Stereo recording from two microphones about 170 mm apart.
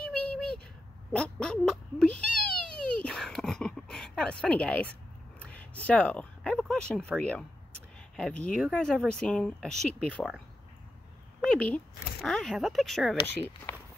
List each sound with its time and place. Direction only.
1.1 s a sound: 5° left (ahead or behind)
5.4 s speech: 5° left (ahead or behind)
11.4 s speech: 5° left (ahead or behind)
13.2 s speech: 30° left (ahead or behind)